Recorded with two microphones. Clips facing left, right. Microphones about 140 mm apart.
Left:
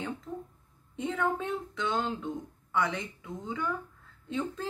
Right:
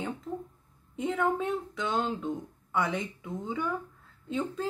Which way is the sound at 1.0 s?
10° right (ahead or behind).